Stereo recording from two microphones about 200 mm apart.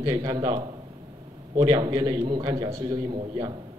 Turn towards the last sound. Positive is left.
turn(degrees=-20)  # may be behind; listen again after turning